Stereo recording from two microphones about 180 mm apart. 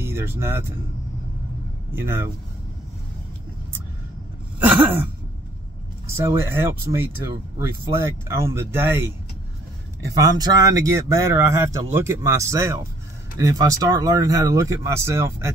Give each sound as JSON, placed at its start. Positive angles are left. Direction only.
{"t": 0.0, "sound": "speech", "side_deg": -15}
{"t": 2.0, "sound": "speech", "side_deg": -10}
{"t": 4.6, "sound": "a sound", "side_deg": -10}
{"t": 6.1, "sound": "speech", "side_deg": -15}
{"t": 8.0, "sound": "speech", "side_deg": -15}
{"t": 10.3, "sound": "speech", "side_deg": -20}